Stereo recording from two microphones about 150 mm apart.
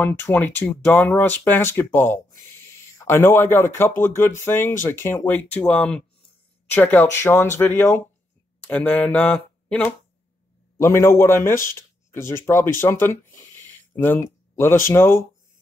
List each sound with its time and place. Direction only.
0.0 s speech: 15° left (ahead or behind)
2.5 s a sound: 20° left (ahead or behind)
4.0 s speech: 15° left (ahead or behind)